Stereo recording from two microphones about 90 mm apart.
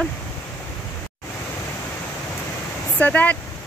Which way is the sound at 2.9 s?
15° left (ahead or behind).